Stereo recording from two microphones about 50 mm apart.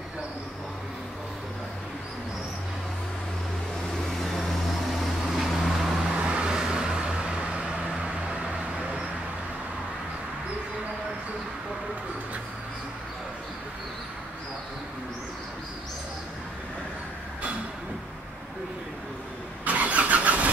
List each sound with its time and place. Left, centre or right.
4.2 s vehicle: centre
6.1 s vehicle: right
19.6 s vehicle: right